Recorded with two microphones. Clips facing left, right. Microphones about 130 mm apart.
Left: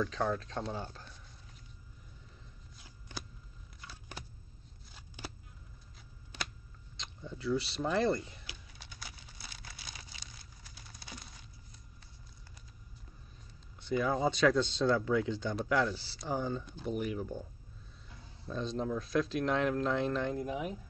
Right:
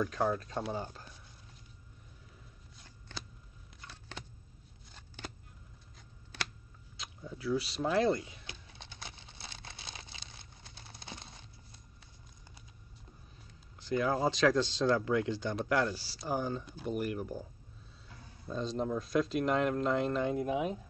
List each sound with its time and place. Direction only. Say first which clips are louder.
0.0 s speech: right 1 dB; 10° right (ahead or behind)
2.8 s shuffling cards: left 1 dB; 10° left (ahead or behind)
3.8 s a sound: even; 10° left (ahead or behind)
7.0 s speech: even; 5° right (ahead or behind)
8.5 s a sound: right 2 dB; 25° right (ahead or behind)
13.8 s speech: even; centre (ahead or behind)
18.5 s speech: right 1 dB; centre (ahead or behind)
20.3 s speech: right 4 dB; 20° right (ahead or behind)